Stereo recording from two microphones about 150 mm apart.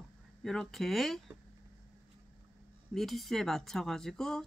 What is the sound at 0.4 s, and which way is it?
Speech, centre (ahead or behind).